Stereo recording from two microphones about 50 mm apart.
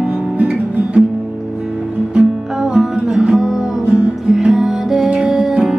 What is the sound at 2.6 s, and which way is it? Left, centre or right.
Music, centre.